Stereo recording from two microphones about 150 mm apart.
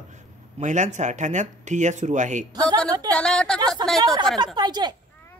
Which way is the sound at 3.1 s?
5° left (ahead or behind).